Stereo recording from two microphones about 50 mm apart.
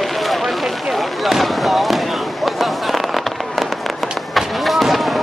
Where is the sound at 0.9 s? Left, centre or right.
Centre.